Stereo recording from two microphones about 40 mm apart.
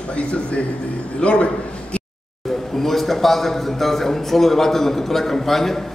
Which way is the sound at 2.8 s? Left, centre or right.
Centre.